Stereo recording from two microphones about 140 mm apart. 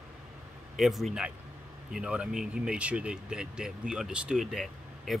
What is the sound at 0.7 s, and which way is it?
Speech, centre (ahead or behind).